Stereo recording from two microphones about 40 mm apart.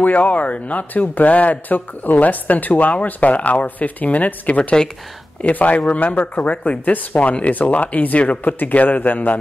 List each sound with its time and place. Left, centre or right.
0.0 s speech: left
8.5 s speech: left